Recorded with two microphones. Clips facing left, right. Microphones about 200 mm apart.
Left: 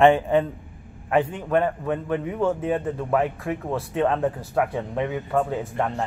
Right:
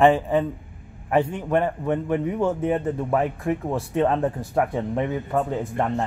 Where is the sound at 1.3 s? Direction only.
15° right (ahead or behind).